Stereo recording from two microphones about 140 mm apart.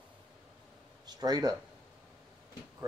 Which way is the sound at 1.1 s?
30° right (ahead or behind).